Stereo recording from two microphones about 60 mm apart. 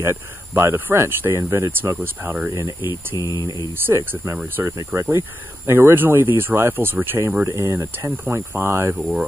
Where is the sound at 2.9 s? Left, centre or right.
Left.